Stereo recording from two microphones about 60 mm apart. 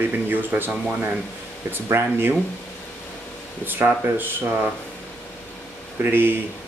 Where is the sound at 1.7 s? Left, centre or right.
Right.